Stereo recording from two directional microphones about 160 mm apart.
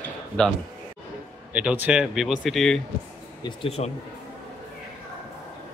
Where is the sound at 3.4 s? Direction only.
30° left (ahead or behind).